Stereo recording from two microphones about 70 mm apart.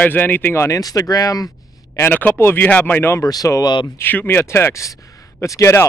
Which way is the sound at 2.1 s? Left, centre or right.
Left.